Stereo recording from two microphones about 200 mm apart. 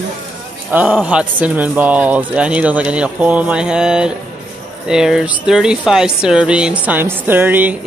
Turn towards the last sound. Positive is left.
turn(degrees=-10)  # may be behind; listen again after turning